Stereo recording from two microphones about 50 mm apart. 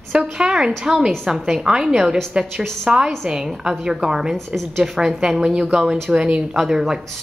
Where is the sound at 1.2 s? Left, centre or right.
Centre.